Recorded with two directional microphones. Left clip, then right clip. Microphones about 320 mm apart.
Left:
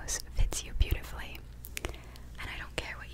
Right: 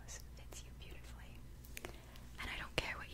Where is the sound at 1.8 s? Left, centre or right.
Centre.